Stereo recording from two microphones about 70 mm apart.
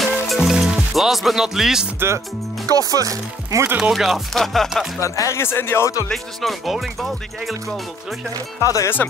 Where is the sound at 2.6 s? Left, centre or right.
Right.